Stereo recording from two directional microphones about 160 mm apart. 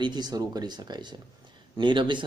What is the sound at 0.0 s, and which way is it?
Speech, 25° right (ahead or behind).